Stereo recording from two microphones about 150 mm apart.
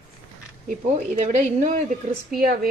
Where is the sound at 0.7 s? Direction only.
55° right (ahead or behind).